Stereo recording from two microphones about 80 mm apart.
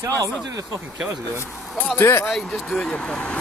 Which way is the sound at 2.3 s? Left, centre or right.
Centre.